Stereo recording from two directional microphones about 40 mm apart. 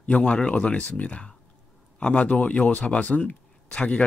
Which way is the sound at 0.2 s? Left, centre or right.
Left.